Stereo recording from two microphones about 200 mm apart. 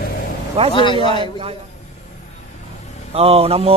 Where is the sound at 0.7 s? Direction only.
25° left (ahead or behind).